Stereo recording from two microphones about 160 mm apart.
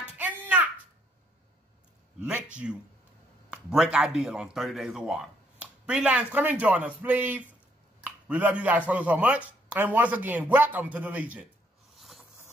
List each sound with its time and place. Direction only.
0.2 s a sound: 10° right (ahead or behind)
2.2 s a man's voice: 5° right (ahead or behind)
11.9 s zipper: centre (ahead or behind)